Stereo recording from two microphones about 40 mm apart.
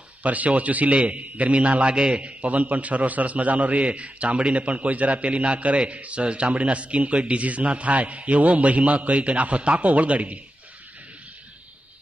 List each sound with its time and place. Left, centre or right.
0.2 s a man's voice: right